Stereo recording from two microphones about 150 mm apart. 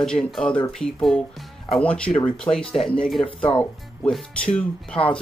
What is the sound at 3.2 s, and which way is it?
Speech, 35° left (ahead or behind).